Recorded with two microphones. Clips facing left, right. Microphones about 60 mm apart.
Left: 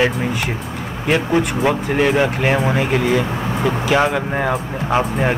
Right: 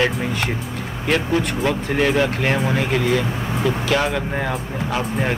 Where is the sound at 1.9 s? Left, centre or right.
Centre.